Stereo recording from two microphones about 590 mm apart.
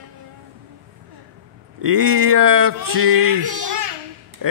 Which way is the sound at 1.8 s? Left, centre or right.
Right.